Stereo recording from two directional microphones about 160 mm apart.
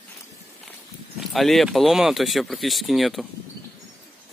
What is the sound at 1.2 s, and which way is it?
Speech, centre (ahead or behind).